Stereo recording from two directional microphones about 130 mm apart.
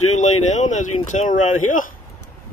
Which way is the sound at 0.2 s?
65° left (ahead or behind).